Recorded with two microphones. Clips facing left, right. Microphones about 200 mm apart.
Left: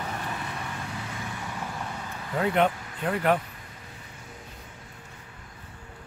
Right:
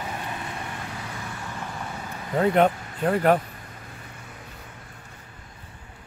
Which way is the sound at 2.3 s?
40° right (ahead or behind).